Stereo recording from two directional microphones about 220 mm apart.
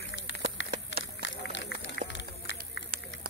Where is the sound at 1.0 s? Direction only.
55° left (ahead or behind).